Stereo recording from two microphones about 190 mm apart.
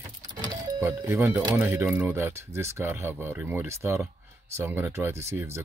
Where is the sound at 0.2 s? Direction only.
20° right (ahead or behind).